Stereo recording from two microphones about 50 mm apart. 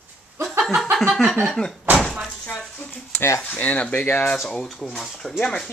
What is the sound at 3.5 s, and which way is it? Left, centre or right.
Speech, left.